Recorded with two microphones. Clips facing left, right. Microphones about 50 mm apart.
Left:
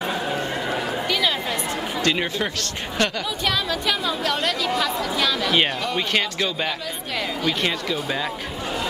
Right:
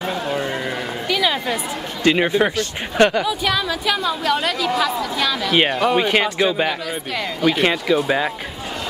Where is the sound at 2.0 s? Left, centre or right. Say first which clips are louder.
Right 8 dB; centre.